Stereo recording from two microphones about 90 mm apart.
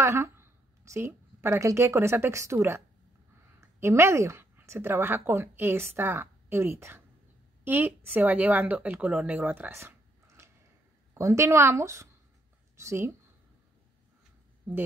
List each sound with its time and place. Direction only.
0.0 s a woman's voice: 30° right (ahead or behind)
9.8 s a sound: 30° right (ahead or behind)
11.1 s a woman's voice: 35° right (ahead or behind)